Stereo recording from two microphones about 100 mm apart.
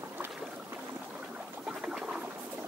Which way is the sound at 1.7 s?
10° right (ahead or behind).